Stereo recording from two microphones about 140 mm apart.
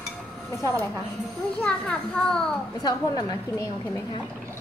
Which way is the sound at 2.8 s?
30° left (ahead or behind).